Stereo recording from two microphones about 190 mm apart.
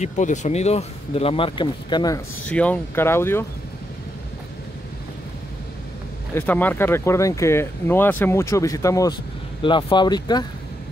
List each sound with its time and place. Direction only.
0.0 s speech: 40° left (ahead or behind); by 2.2 s 20° left (ahead or behind)
2.4 s speech: 5° left (ahead or behind)
6.3 s speech: 10° left (ahead or behind)